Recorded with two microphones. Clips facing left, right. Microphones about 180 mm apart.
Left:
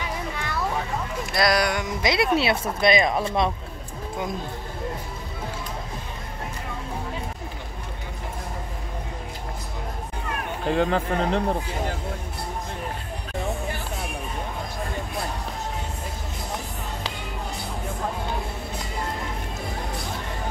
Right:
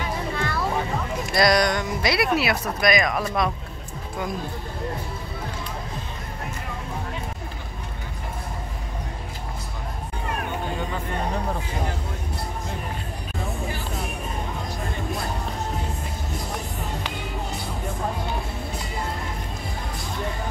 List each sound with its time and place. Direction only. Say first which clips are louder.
1.3 s speech: right 2 dB; centre (ahead or behind)
1.9 s speech: even; 20° left (ahead or behind)
10.7 s speech: left 7 dB; 90° left